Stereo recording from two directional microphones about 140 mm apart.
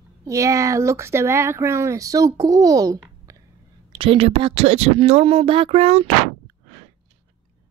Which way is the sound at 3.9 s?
40° right (ahead or behind).